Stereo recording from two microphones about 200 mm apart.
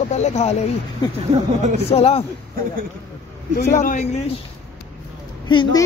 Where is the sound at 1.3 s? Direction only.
35° right (ahead or behind).